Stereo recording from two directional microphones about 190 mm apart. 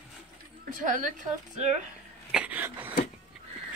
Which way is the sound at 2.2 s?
5° right (ahead or behind).